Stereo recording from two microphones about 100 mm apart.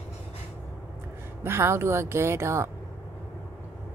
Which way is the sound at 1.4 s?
25° right (ahead or behind).